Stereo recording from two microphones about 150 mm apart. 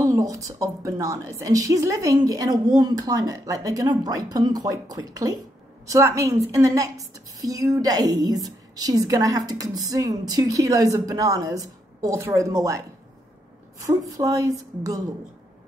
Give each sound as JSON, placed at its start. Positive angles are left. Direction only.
{"t": 0.0, "sound": "a woman's voice", "side_deg": -20}
{"t": 13.8, "sound": "a woman's voice", "side_deg": -25}